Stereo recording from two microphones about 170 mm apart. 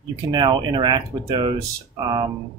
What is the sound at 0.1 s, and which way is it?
Speech, 25° right (ahead or behind).